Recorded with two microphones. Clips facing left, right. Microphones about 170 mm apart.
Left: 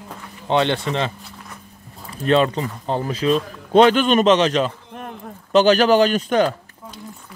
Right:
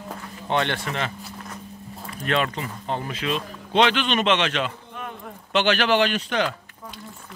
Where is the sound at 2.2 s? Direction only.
30° left (ahead or behind).